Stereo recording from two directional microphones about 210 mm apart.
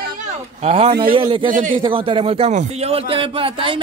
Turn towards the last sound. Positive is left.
turn(degrees=-25)  # may be behind; listen again after turning